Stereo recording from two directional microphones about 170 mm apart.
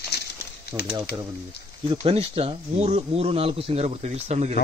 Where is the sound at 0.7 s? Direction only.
10° right (ahead or behind).